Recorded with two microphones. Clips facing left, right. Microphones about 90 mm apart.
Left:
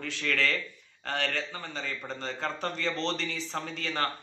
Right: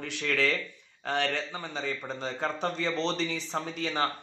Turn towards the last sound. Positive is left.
turn(degrees=-15)  # may be behind; listen again after turning